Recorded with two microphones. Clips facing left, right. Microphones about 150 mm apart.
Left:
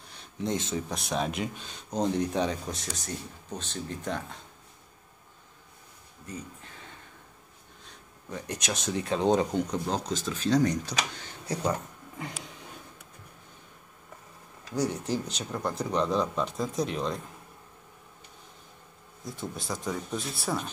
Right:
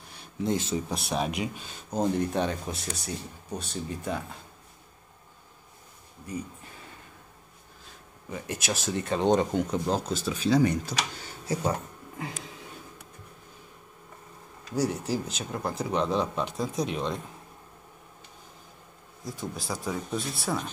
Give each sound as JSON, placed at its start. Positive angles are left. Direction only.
{"t": 0.5, "sound": "speech", "side_deg": -5}
{"t": 7.8, "sound": "speech", "side_deg": -5}
{"t": 14.8, "sound": "speech", "side_deg": -5}
{"t": 19.2, "sound": "speech", "side_deg": 0}